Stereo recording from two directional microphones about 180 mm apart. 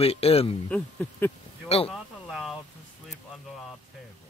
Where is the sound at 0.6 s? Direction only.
5° left (ahead or behind).